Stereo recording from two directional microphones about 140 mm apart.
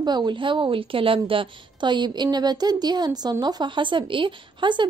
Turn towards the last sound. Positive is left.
turn(degrees=-35)  # may be behind; listen again after turning